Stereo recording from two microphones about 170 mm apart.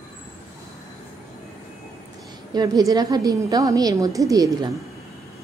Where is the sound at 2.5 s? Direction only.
20° right (ahead or behind).